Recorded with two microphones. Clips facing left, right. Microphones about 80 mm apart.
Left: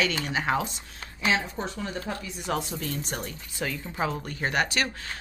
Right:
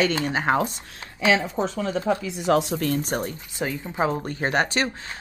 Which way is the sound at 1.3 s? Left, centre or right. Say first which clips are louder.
Right 6 dB; right.